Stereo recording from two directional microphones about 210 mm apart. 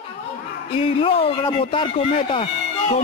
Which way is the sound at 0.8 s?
25° left (ahead or behind).